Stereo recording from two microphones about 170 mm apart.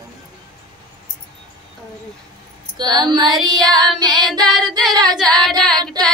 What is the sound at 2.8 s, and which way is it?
Speech, 25° right (ahead or behind).